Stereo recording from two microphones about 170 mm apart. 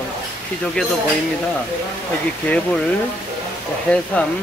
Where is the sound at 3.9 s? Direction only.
5° left (ahead or behind).